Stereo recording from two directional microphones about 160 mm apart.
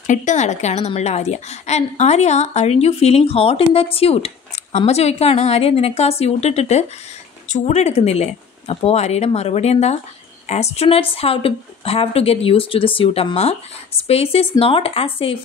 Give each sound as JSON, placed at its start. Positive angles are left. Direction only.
{"t": 0.0, "sound": "a woman's voice", "side_deg": 50}